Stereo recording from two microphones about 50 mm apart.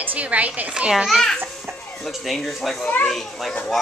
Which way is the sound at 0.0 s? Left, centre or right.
Right.